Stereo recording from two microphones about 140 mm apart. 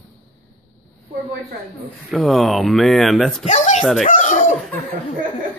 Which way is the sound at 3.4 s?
55° left (ahead or behind).